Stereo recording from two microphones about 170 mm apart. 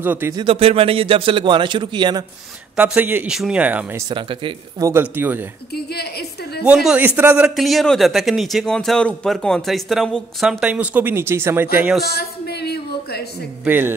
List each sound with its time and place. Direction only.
0.0 s speech: 10° right (ahead or behind)
0.4 s a man's voice: 35° right (ahead or behind)
2.7 s speech: 5° right (ahead or behind)
4.1 s speech: 30° right (ahead or behind)
4.8 s speech: 15° right (ahead or behind)
5.9 s a woman's voice: 70° left (ahead or behind)
6.6 s a man's voice: 5° right (ahead or behind)
12.0 s a sound: 70° left (ahead or behind)
13.7 s speech: 10° right (ahead or behind)